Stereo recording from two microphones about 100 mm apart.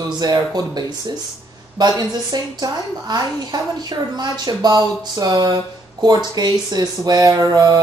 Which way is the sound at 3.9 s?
45° right (ahead or behind).